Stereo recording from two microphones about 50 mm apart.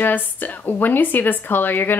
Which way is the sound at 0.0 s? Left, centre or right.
Left.